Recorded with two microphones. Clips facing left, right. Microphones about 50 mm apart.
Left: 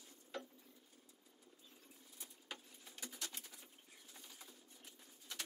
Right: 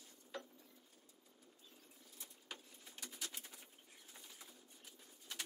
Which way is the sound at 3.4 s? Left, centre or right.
Right.